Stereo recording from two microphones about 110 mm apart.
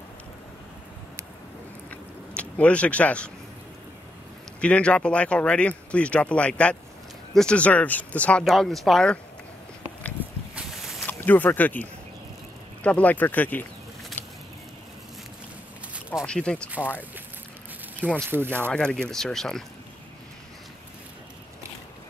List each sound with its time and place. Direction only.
1.9 s a sound: 10° left (ahead or behind)
4.6 s speech: 10° left (ahead or behind)
8.5 s speech: centre (ahead or behind)
10.2 s a sound: 15° right (ahead or behind)
11.1 s speech: 15° left (ahead or behind)
14.2 s a sound: 15° left (ahead or behind)
16.3 s speech: 10° left (ahead or behind)
18.0 s speech: 15° right (ahead or behind)
18.7 s speech: 10° left (ahead or behind)